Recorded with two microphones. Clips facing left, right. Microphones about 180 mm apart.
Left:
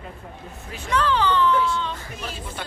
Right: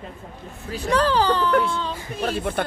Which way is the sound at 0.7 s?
35° right (ahead or behind).